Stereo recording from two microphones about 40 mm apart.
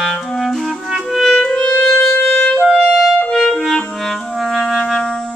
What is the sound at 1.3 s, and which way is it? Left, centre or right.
Music, centre.